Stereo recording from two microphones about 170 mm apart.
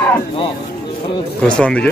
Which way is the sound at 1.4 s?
5° left (ahead or behind).